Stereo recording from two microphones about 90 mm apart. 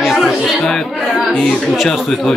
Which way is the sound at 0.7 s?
5° left (ahead or behind).